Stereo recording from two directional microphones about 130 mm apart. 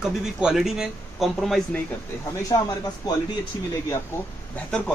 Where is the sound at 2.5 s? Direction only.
30° left (ahead or behind).